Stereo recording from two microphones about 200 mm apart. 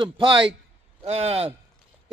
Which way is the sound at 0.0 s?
25° right (ahead or behind).